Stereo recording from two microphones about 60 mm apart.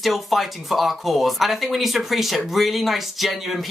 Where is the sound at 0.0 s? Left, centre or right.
Centre.